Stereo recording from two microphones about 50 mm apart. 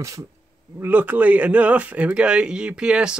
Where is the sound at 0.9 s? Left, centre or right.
Right; by 3.1 s centre.